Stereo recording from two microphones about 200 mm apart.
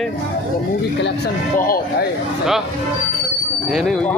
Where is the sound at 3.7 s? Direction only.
Centre (ahead or behind).